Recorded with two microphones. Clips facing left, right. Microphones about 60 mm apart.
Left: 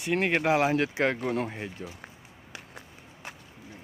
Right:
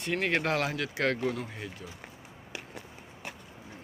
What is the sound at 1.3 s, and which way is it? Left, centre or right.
Speech, left.